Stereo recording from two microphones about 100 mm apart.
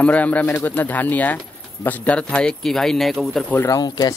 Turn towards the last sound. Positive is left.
turn(degrees=40)  # may be behind; listen again after turning